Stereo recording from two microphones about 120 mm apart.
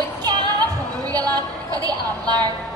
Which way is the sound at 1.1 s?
30° right (ahead or behind).